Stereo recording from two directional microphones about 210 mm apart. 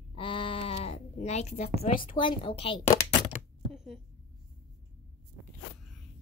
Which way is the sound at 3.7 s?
5° right (ahead or behind).